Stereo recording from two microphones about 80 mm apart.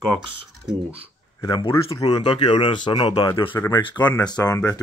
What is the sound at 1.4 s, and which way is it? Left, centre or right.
Speech, left.